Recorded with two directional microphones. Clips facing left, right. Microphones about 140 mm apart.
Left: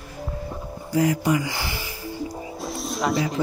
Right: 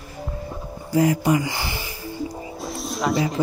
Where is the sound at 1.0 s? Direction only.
30° right (ahead or behind).